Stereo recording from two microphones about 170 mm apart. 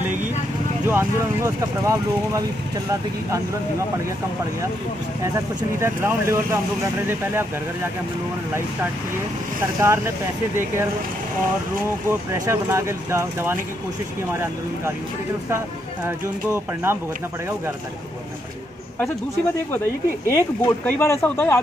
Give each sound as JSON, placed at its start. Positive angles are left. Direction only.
{"t": 0.8, "sound": "speech", "side_deg": -15}
{"t": 5.8, "sound": "speech", "side_deg": -15}
{"t": 9.8, "sound": "speech", "side_deg": -15}
{"t": 12.4, "sound": "speech", "side_deg": -15}
{"t": 16.5, "sound": "speech", "side_deg": -15}
{"t": 20.2, "sound": "speech", "side_deg": 15}